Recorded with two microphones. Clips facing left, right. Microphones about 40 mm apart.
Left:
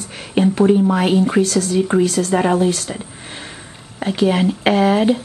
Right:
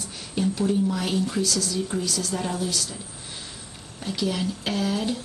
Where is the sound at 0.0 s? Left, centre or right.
Left.